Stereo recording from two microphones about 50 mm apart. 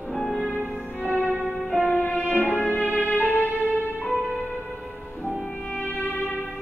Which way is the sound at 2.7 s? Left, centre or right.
Left.